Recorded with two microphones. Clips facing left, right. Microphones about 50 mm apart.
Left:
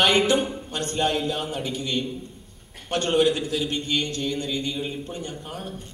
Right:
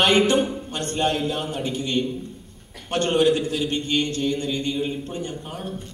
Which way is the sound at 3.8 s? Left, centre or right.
Right.